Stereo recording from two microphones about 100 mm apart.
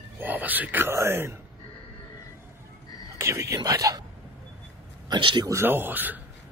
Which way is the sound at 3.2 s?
30° right (ahead or behind).